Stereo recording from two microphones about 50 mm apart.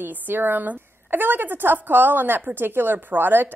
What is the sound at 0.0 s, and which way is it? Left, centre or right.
A woman's voice, right.